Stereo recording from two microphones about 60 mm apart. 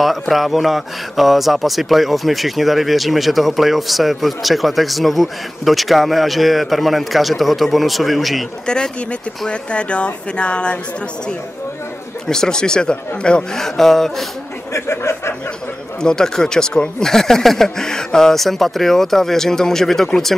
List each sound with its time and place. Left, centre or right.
0.0 s speech: centre
8.6 s speech: centre
12.3 s speech: centre
14.7 s speech: left
16.0 s speech: centre